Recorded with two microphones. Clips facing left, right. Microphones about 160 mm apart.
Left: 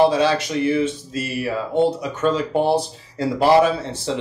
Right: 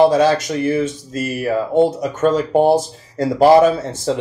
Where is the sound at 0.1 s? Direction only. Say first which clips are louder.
Right 4 dB; 45° right (ahead or behind).